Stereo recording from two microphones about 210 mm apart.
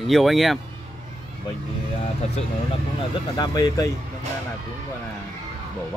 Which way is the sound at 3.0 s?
20° left (ahead or behind).